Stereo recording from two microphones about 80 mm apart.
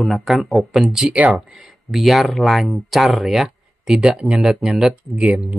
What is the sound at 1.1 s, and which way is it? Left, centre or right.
Speech, centre.